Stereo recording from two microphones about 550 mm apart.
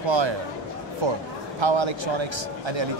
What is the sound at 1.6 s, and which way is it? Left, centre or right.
Speech, right.